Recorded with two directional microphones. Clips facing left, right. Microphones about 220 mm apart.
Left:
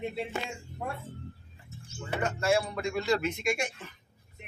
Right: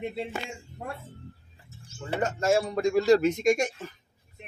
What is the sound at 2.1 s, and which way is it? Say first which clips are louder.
Speech: right 3 dB; 40° right (ahead or behind).